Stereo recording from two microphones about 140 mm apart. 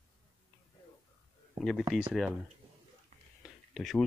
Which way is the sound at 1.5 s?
5° left (ahead or behind).